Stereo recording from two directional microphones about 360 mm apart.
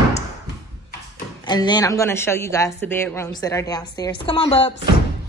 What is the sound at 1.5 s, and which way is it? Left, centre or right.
A woman's voice, centre.